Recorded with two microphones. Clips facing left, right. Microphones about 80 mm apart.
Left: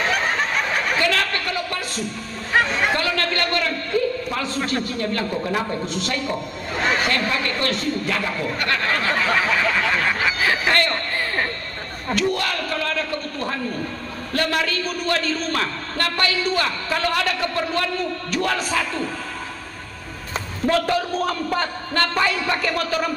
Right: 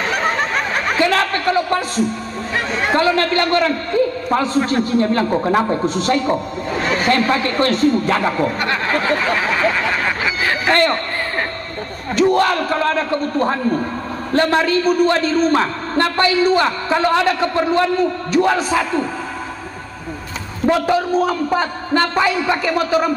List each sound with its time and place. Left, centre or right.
1.0 s a man's voice: right
2.9 s a man's voice: right
10.7 s a man's voice: right
12.2 s a man's voice: right
20.6 s a man's voice: centre